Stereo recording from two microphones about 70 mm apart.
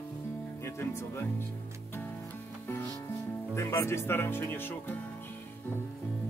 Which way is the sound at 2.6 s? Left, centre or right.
Left.